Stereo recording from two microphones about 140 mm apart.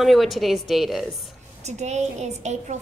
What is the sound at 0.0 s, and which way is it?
Speech, centre (ahead or behind).